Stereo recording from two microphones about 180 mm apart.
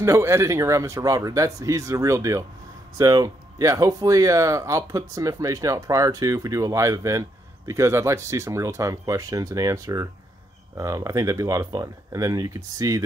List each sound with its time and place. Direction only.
0.0 s speech: 15° right (ahead or behind)